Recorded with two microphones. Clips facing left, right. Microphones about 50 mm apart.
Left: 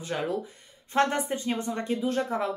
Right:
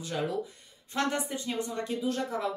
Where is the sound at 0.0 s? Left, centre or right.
Left.